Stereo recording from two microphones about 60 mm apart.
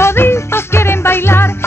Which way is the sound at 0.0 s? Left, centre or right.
Left.